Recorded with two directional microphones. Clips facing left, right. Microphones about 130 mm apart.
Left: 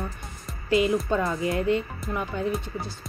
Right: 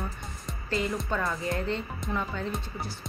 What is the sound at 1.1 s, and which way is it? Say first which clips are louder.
Speech: left 5 dB; 25° left (ahead or behind).